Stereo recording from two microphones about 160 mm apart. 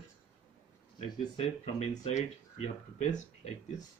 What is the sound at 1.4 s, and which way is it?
Speech, 45° left (ahead or behind).